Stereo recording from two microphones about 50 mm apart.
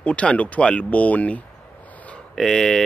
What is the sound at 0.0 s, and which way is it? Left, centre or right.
Speech, left.